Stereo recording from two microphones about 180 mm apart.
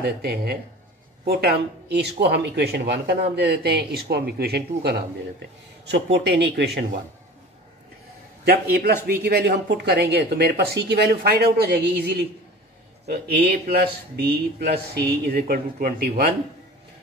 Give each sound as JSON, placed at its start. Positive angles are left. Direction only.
{"t": 0.0, "sound": "speech", "side_deg": -60}
{"t": 5.9, "sound": "speech", "side_deg": -75}
{"t": 8.5, "sound": "speech", "side_deg": -60}